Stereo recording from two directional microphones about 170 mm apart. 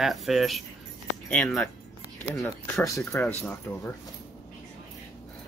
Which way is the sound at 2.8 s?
20° left (ahead or behind).